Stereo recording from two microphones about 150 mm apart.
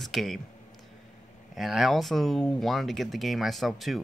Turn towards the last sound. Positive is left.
turn(degrees=0)  # may be behind; listen again after turning